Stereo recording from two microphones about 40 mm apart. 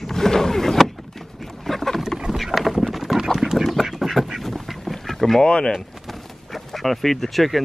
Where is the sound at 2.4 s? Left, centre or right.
Centre.